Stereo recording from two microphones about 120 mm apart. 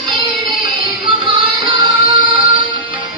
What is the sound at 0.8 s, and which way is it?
Music, 50° right (ahead or behind).